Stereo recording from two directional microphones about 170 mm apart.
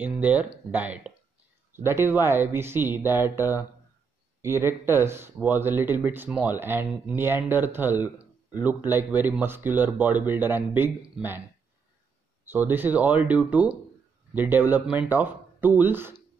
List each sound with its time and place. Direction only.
0.0 s speech: 10° right (ahead or behind)
12.4 s speech: 10° right (ahead or behind)